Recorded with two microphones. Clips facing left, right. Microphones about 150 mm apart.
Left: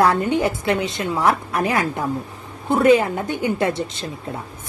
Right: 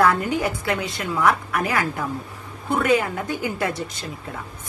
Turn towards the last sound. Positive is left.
turn(degrees=25)  # may be behind; listen again after turning